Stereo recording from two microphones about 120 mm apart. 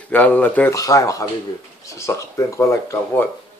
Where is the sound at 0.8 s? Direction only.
25° left (ahead or behind).